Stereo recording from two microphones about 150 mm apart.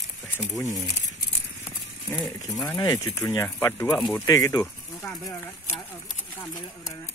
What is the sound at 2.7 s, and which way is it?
Speech, 25° left (ahead or behind).